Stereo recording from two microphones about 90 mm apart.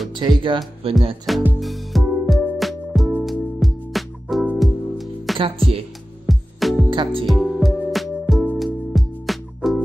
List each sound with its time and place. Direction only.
0.1 s speech: 60° right (ahead or behind)
0.8 s speech: 90° right
1.3 s speech: centre (ahead or behind)
1.6 s music: centre (ahead or behind)
6.9 s speech: 65° right (ahead or behind)
7.2 s music: centre (ahead or behind)